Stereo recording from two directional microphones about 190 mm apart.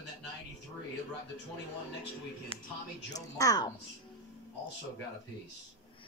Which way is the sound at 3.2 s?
20° left (ahead or behind).